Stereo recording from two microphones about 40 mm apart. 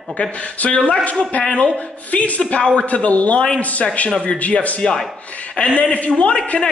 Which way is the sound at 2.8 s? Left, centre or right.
Left.